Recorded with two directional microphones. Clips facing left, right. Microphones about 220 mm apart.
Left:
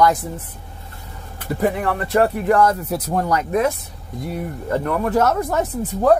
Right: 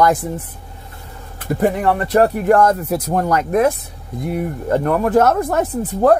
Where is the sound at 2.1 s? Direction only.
45° right (ahead or behind).